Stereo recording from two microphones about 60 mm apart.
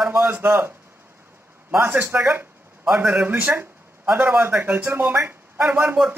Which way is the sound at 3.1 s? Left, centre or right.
Right.